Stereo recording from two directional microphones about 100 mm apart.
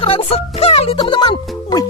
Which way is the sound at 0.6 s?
90° left.